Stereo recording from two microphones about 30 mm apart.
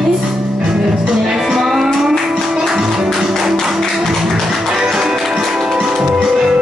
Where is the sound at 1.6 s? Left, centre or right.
Centre.